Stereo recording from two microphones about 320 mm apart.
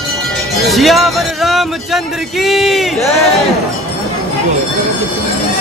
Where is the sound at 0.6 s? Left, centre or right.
Centre.